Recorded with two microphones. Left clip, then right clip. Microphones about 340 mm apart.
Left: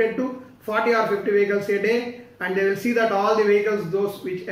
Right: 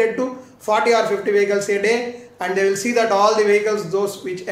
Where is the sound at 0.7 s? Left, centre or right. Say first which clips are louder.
Right 4 dB; centre.